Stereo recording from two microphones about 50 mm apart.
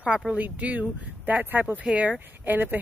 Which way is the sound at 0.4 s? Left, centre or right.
Right.